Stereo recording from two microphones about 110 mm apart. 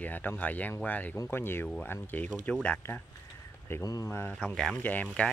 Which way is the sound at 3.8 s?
35° left (ahead or behind).